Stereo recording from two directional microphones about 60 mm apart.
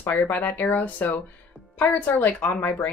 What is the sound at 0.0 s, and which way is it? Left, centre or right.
Speech, left.